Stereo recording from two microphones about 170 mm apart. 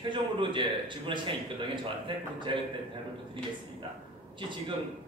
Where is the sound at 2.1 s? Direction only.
30° right (ahead or behind).